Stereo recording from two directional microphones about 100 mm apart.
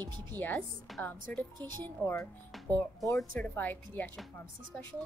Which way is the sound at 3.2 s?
10° left (ahead or behind).